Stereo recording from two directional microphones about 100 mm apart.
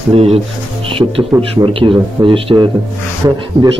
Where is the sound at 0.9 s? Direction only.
65° right (ahead or behind).